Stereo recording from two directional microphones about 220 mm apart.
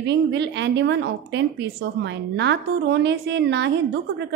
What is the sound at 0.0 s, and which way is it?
A woman's voice, 50° right (ahead or behind).